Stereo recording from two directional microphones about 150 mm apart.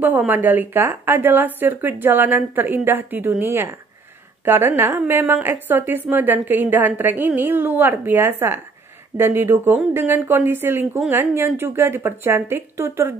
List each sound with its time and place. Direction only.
0.0 s a woman's voice: 10° right (ahead or behind)